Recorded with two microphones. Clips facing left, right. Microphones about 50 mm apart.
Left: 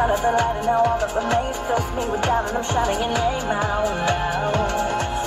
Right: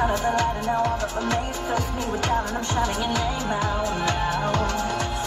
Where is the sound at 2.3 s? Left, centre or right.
Centre.